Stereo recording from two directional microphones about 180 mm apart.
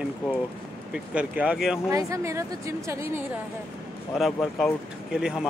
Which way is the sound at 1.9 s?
15° right (ahead or behind).